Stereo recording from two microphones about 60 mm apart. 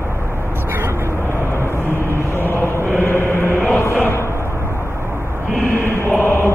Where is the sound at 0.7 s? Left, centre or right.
Right.